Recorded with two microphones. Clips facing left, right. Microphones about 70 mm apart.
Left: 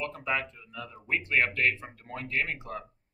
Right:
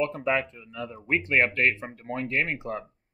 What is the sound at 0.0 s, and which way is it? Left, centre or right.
Speech, right.